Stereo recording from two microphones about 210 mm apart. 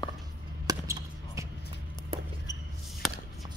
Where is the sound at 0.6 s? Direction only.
15° right (ahead or behind).